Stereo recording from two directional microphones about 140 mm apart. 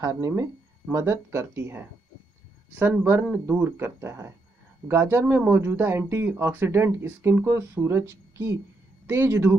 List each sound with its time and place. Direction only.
0.0 s speech: 20° right (ahead or behind)